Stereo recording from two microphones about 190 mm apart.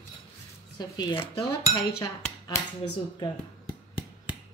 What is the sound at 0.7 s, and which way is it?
A woman's voice, 20° left (ahead or behind).